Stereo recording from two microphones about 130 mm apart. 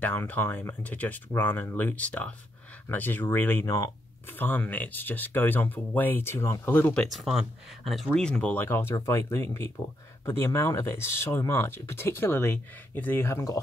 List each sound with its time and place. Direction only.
0.0 s speech: 15° left (ahead or behind)